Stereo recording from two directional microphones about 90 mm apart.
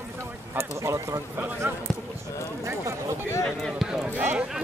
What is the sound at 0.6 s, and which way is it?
Speech, 30° right (ahead or behind).